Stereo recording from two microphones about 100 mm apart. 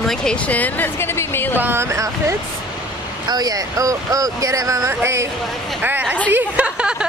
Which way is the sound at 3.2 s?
40° right (ahead or behind).